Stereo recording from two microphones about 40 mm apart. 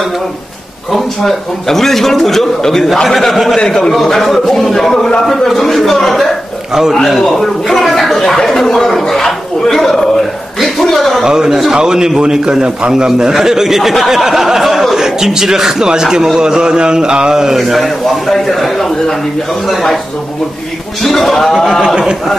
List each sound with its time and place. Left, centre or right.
0.9 s a man's voice: centre
4.9 s a man's voice: centre
5.2 s a man's voice: centre
7.3 s a man's voice: centre
11.2 s speech: centre
17.6 s a man's voice: centre
21.0 s a man's voice: centre
21.8 s speech: centre